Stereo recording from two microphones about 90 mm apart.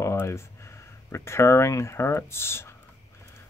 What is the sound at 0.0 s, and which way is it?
Speech, 30° left (ahead or behind).